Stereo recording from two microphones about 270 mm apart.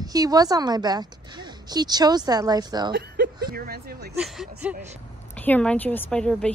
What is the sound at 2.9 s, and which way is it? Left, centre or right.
Speech, right.